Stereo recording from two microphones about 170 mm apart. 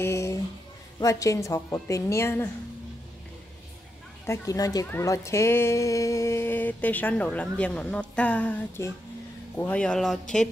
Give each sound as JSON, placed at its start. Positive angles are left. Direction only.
{"t": 0.0, "sound": "a sound", "side_deg": 15}
{"t": 0.9, "sound": "a woman's voice", "side_deg": 20}
{"t": 4.3, "sound": "a woman's voice", "side_deg": 20}